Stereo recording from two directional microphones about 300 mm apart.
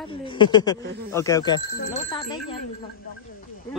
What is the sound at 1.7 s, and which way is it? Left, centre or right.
Speech, left.